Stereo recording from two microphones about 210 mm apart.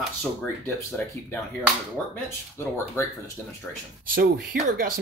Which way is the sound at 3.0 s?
15° left (ahead or behind).